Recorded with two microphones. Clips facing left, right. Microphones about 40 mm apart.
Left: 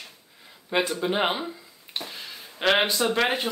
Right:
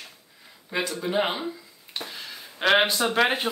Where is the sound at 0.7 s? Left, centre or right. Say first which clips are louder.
Left 2 dB; left.